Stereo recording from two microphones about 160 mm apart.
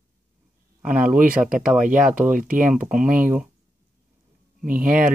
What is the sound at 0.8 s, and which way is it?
Speech, 10° right (ahead or behind).